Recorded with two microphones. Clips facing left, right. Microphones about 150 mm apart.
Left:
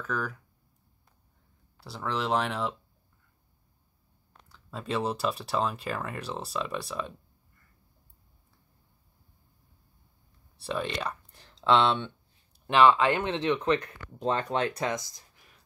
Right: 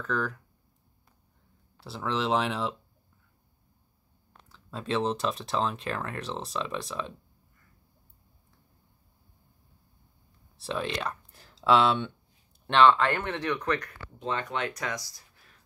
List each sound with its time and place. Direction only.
0.0 s speech: centre (ahead or behind)
1.8 s speech: centre (ahead or behind)
4.5 s speech: centre (ahead or behind)
10.6 s speech: centre (ahead or behind)
12.6 s speech: 10° left (ahead or behind)
14.1 s speech: 35° left (ahead or behind)
14.8 s speech: 25° left (ahead or behind)